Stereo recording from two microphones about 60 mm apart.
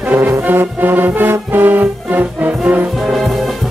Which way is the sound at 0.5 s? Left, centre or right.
Right.